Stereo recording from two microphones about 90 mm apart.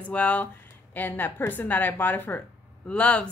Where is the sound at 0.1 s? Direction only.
15° left (ahead or behind).